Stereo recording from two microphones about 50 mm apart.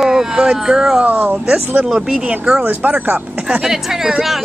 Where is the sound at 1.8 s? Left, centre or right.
Centre.